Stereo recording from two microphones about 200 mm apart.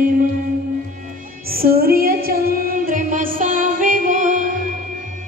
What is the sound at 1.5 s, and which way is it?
Female singing, 50° right (ahead or behind).